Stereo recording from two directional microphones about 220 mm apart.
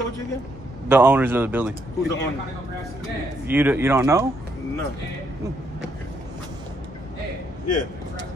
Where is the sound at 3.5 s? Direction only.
10° right (ahead or behind).